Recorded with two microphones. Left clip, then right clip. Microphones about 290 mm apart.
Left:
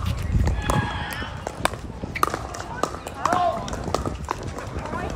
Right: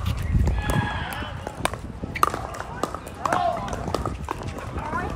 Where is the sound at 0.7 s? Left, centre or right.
Centre.